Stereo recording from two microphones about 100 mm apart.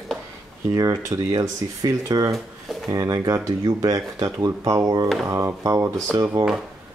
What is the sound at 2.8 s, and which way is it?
Speech, 40° right (ahead or behind).